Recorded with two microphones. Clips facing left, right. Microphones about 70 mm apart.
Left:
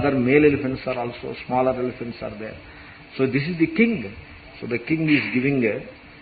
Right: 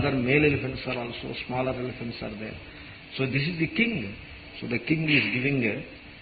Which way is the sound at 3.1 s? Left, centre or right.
Left.